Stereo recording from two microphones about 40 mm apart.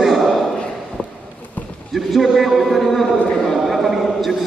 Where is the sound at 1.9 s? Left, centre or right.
Centre.